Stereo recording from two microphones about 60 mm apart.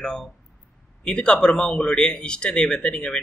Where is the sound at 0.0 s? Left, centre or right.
Centre.